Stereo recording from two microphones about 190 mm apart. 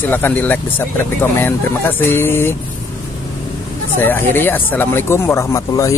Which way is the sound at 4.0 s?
10° left (ahead or behind).